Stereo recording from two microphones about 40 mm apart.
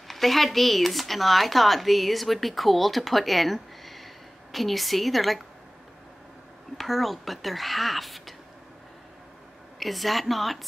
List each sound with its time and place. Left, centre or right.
0.1 s speech: centre
6.8 s speech: centre
9.8 s speech: centre